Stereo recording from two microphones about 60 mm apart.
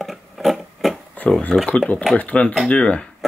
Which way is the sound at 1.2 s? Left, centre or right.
Left.